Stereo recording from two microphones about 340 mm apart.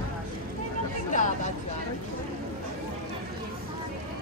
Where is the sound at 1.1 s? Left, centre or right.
Left.